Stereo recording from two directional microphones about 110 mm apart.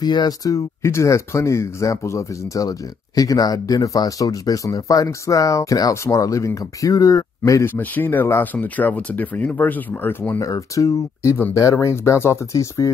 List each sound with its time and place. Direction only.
0.0 s speech: 40° left (ahead or behind)
7.7 s speech: 15° left (ahead or behind)
10.4 s speech: 30° left (ahead or behind)